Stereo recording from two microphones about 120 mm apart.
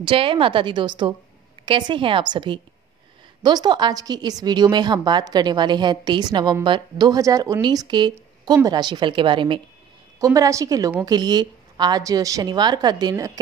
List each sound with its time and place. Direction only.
0.0 s a woman's voice: 50° right (ahead or behind)
10.2 s a woman's voice: 30° right (ahead or behind)